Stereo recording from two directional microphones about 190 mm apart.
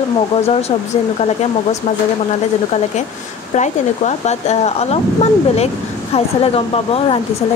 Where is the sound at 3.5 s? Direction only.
40° left (ahead or behind).